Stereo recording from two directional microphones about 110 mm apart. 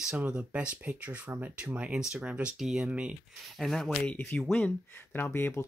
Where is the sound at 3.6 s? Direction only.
5° left (ahead or behind); by 5.6 s 20° left (ahead or behind).